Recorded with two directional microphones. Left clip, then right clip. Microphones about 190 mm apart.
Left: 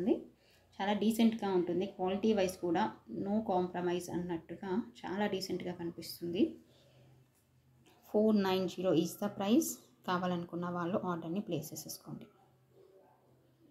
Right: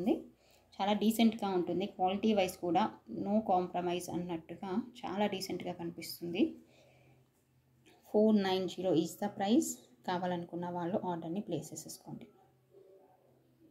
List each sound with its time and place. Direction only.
0.7 s speech: 25° right (ahead or behind)
8.1 s speech: 10° right (ahead or behind)